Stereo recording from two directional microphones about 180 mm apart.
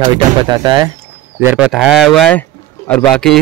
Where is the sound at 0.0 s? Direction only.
25° right (ahead or behind).